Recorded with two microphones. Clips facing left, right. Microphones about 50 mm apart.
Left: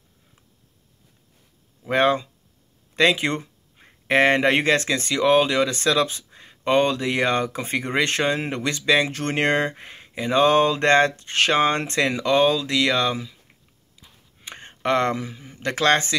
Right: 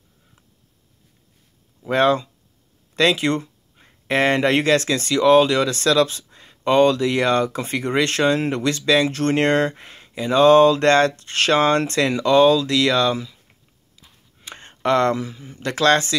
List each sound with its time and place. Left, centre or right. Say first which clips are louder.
1.9 s speech: right 2 dB; left
14.4 s a sound: even; centre
14.8 s speech: right 3 dB; centre